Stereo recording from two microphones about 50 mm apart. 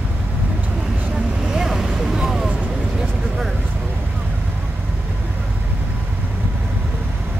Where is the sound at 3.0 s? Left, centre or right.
Centre.